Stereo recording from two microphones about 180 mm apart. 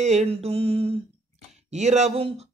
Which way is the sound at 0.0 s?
35° right (ahead or behind).